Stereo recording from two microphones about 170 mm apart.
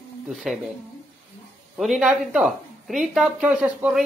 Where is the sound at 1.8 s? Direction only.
Centre (ahead or behind).